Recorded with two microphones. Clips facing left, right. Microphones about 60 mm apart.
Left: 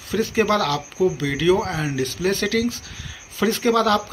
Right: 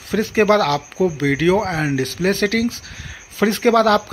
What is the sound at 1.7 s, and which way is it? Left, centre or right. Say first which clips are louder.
Speech: right 5 dB; right.